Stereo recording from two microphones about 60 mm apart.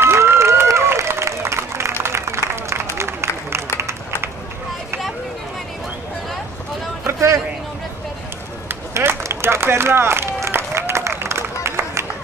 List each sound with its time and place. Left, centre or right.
0.0 s applause: right
7.1 s a sound: right
8.9 s run: right